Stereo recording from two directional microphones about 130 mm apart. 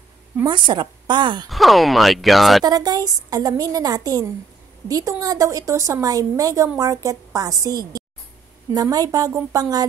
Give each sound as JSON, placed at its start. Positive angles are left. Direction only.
{"t": 0.5, "sound": "a woman's voice", "side_deg": -35}
{"t": 1.5, "sound": "speech", "side_deg": 0}
{"t": 2.6, "sound": "a woman's voice", "side_deg": -30}